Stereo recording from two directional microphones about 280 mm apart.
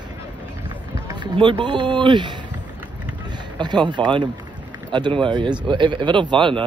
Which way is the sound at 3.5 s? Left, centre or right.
Centre.